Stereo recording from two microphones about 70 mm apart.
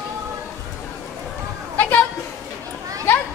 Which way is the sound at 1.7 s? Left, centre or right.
Left.